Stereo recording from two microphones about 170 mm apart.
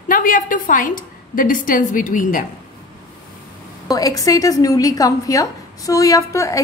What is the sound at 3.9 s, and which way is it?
A woman's voice, 20° left (ahead or behind).